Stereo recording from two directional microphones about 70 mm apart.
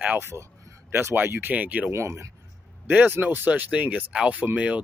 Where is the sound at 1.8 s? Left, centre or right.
Right.